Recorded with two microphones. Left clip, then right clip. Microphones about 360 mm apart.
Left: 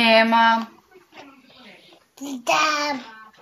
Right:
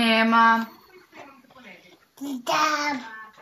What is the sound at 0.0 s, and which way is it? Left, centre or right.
Speech, left.